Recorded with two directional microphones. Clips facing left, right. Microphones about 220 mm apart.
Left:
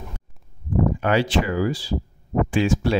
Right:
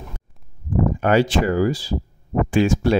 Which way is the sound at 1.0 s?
45° right (ahead or behind).